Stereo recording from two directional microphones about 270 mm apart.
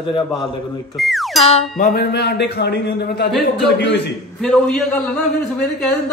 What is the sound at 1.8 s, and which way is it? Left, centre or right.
A man's voice, left.